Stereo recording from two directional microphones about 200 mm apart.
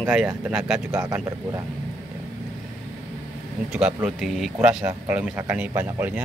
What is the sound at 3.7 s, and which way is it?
Speech, 5° right (ahead or behind).